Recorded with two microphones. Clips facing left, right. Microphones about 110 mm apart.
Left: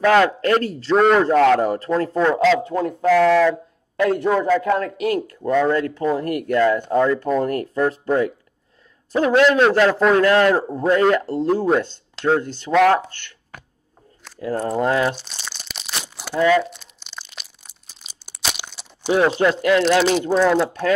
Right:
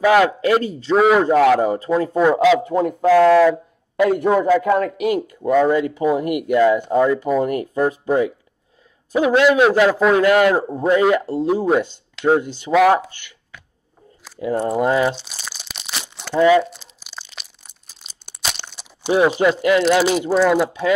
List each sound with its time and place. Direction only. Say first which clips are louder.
0.0 s a man's voice: right 1 dB; 10° right (ahead or behind)
13.5 s a sound: left 3 dB; 45° left (ahead or behind)
14.4 s a man's voice: right 2 dB; 15° right (ahead or behind)
15.1 s crumpling: even; 5° right (ahead or behind)
16.3 s a man's voice: right 3 dB; 15° right (ahead or behind)
16.7 s crunch: right 1 dB; 5° right (ahead or behind)
19.0 s a man's voice: right 1 dB; 10° right (ahead or behind)